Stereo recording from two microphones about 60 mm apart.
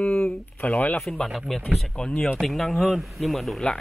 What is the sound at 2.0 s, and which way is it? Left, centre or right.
Speech, centre.